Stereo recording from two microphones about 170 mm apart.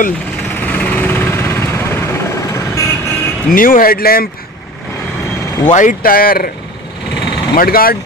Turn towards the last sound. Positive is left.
turn(degrees=60)  # may be behind; listen again after turning